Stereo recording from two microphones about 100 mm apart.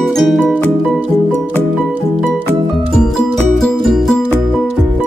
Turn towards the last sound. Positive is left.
turn(degrees=0)  # may be behind; listen again after turning